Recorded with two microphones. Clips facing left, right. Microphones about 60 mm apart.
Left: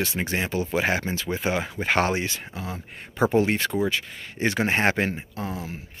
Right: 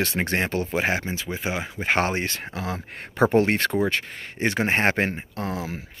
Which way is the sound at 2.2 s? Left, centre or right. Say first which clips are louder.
Right 2 dB; right.